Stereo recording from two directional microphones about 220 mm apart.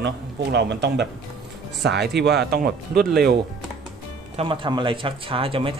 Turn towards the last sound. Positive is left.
turn(degrees=-25)  # may be behind; listen again after turning